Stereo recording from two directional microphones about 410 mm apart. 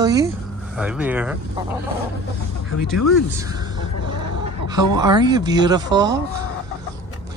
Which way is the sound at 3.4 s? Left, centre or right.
Centre.